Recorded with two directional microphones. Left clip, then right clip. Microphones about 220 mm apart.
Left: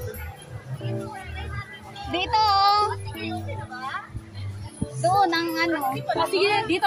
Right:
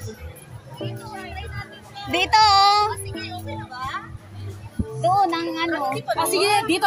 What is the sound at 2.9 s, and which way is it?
Music, 45° right (ahead or behind).